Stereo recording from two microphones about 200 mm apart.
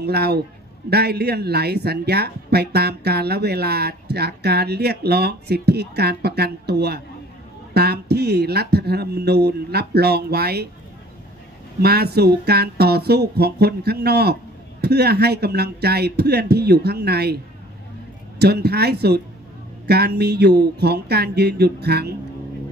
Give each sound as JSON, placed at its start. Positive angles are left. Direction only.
{"t": 0.0, "sound": "speech", "side_deg": -55}
{"t": 11.8, "sound": "speech", "side_deg": -50}
{"t": 18.4, "sound": "speech", "side_deg": -55}